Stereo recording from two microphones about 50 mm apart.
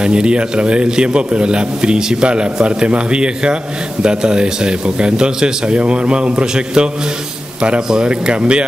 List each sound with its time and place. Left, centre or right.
0.0 s a man's voice: centre